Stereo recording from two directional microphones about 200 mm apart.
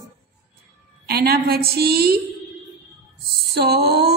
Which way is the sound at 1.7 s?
50° right (ahead or behind).